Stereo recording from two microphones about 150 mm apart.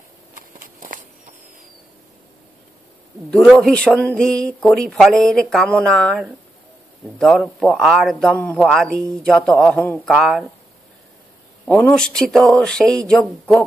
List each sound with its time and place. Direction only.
0.3 s a sound: 65° right (ahead or behind)
3.3 s speech: centre (ahead or behind)
11.6 s speech: 5° left (ahead or behind)